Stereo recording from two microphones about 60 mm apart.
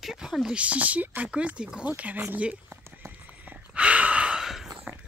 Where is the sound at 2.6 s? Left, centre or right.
Right.